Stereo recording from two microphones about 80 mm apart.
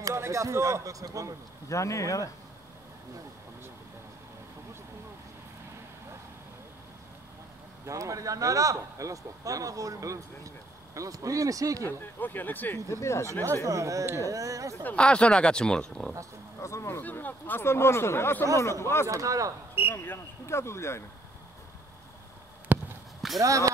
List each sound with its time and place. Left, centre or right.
0.0 s speech: right
1.7 s speech: left
7.8 s speech: right
11.8 s speech: left
12.7 s speech: left
13.3 s speech: right
14.8 s speech: centre
16.6 s speech: left
17.0 s speech: left
19.0 s speech: right
19.9 s speech: left
22.7 s a sound: right
23.4 s speech: right